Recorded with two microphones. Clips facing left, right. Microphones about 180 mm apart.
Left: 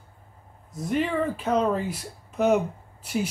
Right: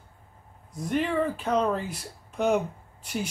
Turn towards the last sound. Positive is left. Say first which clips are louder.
# left 4 dB
turn(degrees=0)  # may be behind; listen again after turning